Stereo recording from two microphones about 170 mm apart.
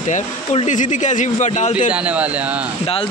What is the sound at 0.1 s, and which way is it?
Speech, 45° left (ahead or behind).